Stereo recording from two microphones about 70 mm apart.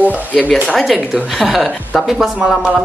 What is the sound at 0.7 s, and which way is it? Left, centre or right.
A woman's voice, centre.